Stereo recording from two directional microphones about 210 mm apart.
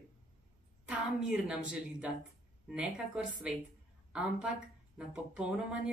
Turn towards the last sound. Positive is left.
turn(degrees=-5)  # may be behind; listen again after turning